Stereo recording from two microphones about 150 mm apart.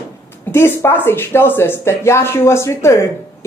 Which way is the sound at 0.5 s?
15° left (ahead or behind).